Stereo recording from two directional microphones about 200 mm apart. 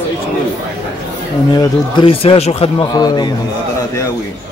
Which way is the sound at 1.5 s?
20° left (ahead or behind).